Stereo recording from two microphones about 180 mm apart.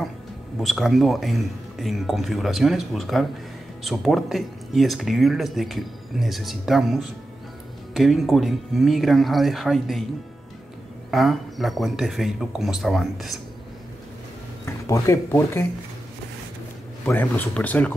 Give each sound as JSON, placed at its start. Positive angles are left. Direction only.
{"t": 0.6, "sound": "speech", "side_deg": 0}
{"t": 11.1, "sound": "speech", "side_deg": 0}
{"t": 14.7, "sound": "speech", "side_deg": 15}
{"t": 17.0, "sound": "speech", "side_deg": 10}